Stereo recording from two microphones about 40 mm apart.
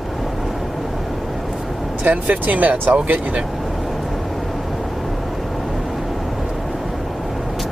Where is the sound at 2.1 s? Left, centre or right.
Right.